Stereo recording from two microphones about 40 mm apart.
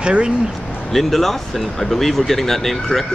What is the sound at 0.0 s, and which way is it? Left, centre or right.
Speech, right.